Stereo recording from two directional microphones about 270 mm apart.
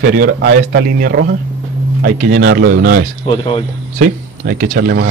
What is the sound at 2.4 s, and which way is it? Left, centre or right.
Speech, right.